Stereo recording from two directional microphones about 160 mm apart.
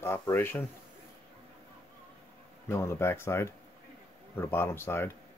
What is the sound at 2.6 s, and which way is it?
Speech, 15° left (ahead or behind).